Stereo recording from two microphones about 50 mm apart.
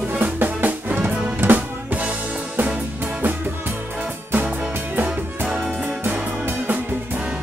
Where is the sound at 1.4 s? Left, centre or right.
Right.